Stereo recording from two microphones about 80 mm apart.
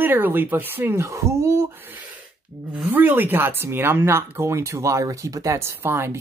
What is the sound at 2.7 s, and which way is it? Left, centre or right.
Speech, right.